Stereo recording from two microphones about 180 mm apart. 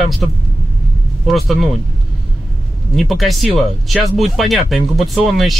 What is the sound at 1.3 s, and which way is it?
Speech, centre (ahead or behind).